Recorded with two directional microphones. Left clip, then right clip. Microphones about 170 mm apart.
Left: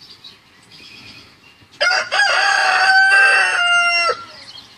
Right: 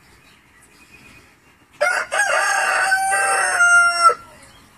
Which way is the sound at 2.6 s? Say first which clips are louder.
Left 4 dB; 40° left (ahead or behind).